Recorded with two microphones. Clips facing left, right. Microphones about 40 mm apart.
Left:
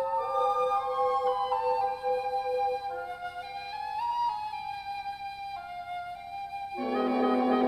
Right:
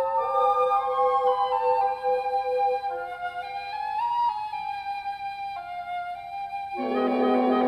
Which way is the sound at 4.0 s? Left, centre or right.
Right.